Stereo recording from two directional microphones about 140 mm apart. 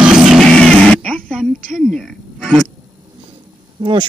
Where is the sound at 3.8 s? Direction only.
35° right (ahead or behind).